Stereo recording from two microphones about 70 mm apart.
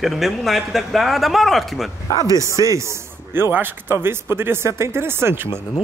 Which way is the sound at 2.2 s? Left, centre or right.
Right.